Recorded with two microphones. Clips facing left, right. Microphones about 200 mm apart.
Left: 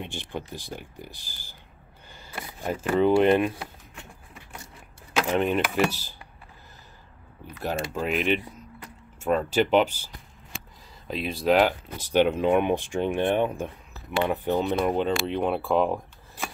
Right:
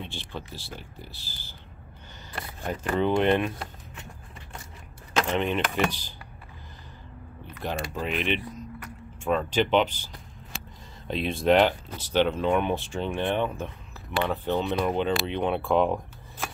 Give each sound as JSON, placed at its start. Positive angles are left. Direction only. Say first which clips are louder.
{"t": 0.0, "sound": "speech", "louder": "left 3 dB", "side_deg": 15}
{"t": 5.1, "sound": "speech", "louder": "left 2 dB", "side_deg": 10}
{"t": 7.6, "sound": "speech", "louder": "left 3 dB", "side_deg": 5}
{"t": 11.1, "sound": "speech", "louder": "right 1 dB", "side_deg": 0}